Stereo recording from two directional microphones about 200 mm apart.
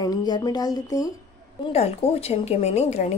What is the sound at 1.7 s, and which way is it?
A woman's voice, 30° left (ahead or behind).